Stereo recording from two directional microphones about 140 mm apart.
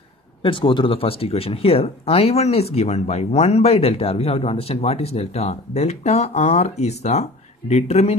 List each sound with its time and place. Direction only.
0.4 s speech: 40° left (ahead or behind)